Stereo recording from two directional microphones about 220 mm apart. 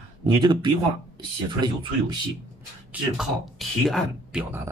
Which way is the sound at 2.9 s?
Centre (ahead or behind).